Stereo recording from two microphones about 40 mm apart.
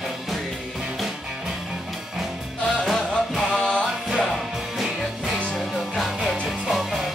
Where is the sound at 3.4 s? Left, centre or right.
Left.